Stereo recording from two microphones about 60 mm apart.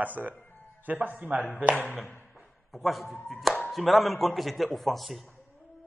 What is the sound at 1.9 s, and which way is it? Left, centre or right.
Speech, left.